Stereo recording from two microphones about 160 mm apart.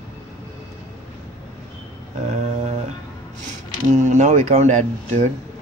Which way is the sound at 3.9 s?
50° right (ahead or behind).